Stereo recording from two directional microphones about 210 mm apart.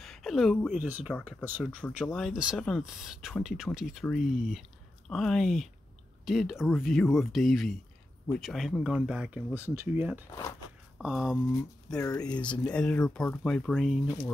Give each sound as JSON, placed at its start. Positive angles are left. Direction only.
{"t": 0.0, "sound": "speech", "side_deg": 0}
{"t": 0.8, "sound": "speech", "side_deg": -10}
{"t": 12.0, "sound": "speech", "side_deg": 15}
{"t": 12.4, "sound": "speech", "side_deg": 5}